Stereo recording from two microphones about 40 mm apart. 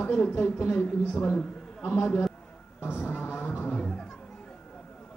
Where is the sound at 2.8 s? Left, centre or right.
Left.